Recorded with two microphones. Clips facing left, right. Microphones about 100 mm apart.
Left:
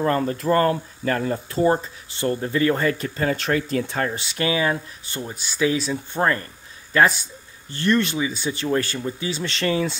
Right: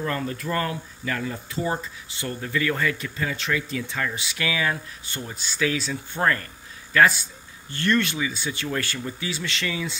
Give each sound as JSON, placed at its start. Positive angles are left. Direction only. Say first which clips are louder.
{"t": 0.0, "sound": "speech", "louder": "left 7 dB", "side_deg": 35}
{"t": 4.3, "sound": "speech", "louder": "left 5 dB", "side_deg": 30}
{"t": 5.3, "sound": "speech", "louder": "left 4 dB", "side_deg": 15}